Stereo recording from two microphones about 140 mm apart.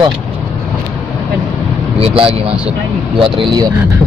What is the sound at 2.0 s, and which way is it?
Speech, 40° right (ahead or behind).